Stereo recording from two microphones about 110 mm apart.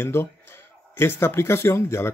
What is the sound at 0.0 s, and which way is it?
Speech, 20° left (ahead or behind).